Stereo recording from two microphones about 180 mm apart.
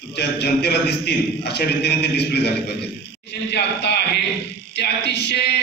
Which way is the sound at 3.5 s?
70° left (ahead or behind).